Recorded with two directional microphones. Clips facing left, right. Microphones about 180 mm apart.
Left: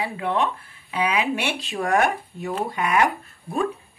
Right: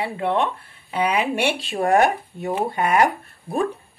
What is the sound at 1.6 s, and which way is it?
A woman's voice, 30° right (ahead or behind).